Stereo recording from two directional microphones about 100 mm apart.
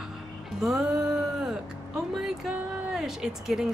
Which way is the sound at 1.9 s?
5° right (ahead or behind).